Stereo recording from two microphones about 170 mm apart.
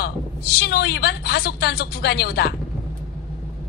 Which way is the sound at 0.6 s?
80° left.